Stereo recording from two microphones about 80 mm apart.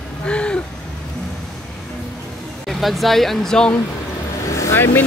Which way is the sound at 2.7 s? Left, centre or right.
Centre.